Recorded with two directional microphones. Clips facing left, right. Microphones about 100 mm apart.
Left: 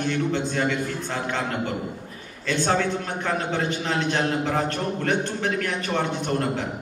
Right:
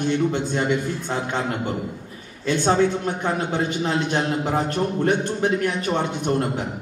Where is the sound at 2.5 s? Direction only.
20° right (ahead or behind).